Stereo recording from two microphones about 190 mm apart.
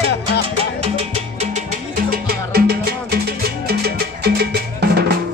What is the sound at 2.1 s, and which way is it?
Music, 55° right (ahead or behind).